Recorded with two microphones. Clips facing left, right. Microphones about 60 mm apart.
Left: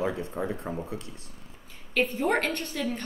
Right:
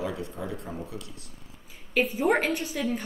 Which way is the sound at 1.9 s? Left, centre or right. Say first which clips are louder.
Right 2 dB; centre.